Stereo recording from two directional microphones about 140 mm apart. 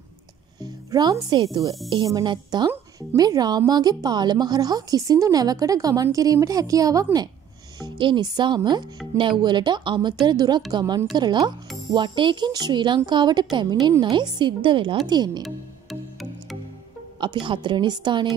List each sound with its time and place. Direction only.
0.6 s music: 30° right (ahead or behind)
2.0 s a woman's voice: 30° right (ahead or behind)
15.4 s music: centre (ahead or behind)
17.2 s speech: 35° right (ahead or behind)